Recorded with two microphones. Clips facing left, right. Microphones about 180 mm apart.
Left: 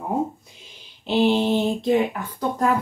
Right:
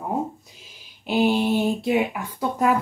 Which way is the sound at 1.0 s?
10° right (ahead or behind).